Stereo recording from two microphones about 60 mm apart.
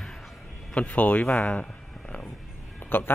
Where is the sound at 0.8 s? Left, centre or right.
Left.